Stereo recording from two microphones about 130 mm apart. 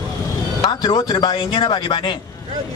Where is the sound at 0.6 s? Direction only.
35° left (ahead or behind).